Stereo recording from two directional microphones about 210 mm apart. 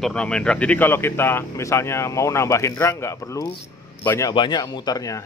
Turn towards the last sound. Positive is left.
turn(degrees=15)  # may be behind; listen again after turning